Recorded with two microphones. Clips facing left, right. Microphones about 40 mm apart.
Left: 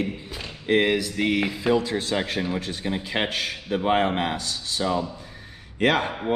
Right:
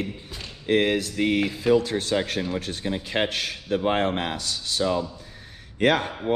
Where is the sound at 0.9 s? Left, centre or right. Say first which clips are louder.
Even; left.